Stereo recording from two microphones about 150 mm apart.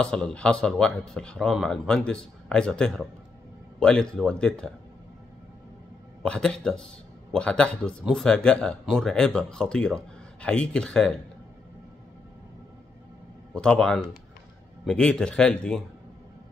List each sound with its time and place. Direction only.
0.0 s speech: 5° left (ahead or behind)
6.2 s speech: 5° left (ahead or behind)
13.5 s speech: 5° left (ahead or behind)